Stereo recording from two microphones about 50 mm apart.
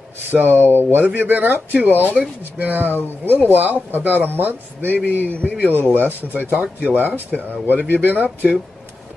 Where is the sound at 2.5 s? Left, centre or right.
Right.